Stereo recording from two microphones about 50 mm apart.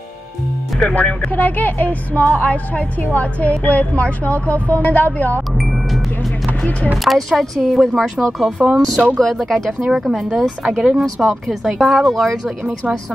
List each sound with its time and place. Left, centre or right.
1.3 s a woman's voice: left
7.1 s speech: centre
10.7 s speech: centre
11.2 s speech: centre